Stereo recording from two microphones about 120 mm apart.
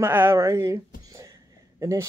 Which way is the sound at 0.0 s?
20° right (ahead or behind).